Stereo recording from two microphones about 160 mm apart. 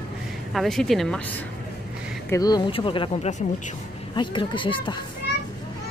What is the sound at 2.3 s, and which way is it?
Speech, 25° left (ahead or behind).